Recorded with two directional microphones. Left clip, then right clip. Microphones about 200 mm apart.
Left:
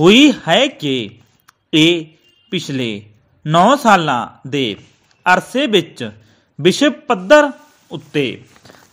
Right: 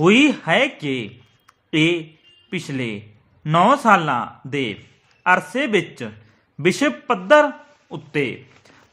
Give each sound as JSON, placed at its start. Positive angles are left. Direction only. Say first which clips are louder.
{"t": 0.0, "sound": "speech", "louder": "left 6 dB", "side_deg": 20}